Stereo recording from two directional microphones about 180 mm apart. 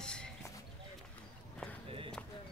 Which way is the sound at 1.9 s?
30° right (ahead or behind).